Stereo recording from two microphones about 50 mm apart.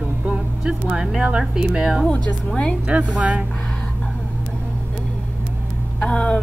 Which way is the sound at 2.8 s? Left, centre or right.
Right.